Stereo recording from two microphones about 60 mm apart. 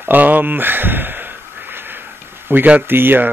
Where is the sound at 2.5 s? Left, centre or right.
Right.